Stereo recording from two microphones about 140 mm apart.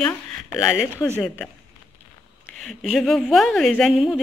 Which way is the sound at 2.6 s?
Centre (ahead or behind).